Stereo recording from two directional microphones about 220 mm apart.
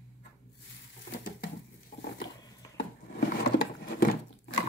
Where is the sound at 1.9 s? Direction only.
35° left (ahead or behind).